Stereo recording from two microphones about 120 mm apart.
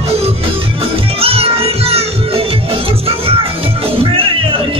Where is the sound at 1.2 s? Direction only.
55° right (ahead or behind).